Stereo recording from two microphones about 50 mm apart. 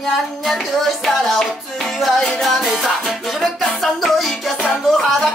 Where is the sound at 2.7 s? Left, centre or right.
Centre.